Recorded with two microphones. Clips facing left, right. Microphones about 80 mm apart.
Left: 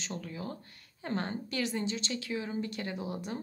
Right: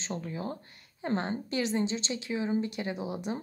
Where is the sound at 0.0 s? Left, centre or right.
Right.